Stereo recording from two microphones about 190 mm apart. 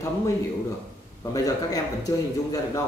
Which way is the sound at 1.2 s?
20° left (ahead or behind).